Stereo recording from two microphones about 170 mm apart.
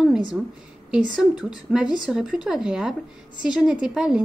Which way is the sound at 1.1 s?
5° right (ahead or behind).